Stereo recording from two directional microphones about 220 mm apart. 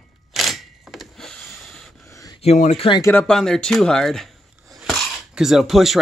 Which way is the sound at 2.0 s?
15° left (ahead or behind).